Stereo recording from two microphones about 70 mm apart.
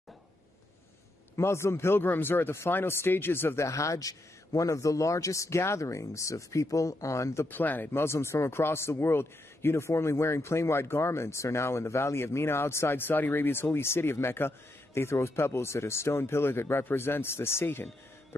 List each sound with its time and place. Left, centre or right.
1.3 s speech: left
7.4 s speech: left